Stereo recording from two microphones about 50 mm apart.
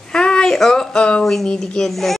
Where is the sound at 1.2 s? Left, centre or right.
Centre.